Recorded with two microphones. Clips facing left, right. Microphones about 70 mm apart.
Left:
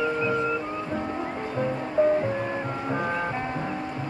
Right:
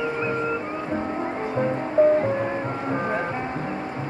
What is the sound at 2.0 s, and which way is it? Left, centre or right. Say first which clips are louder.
Music: right 4 dB; right.